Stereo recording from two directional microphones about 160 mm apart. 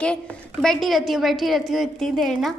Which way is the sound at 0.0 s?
5° left (ahead or behind).